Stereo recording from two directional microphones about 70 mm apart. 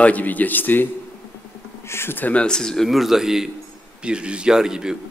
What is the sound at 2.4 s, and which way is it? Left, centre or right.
Speech, centre.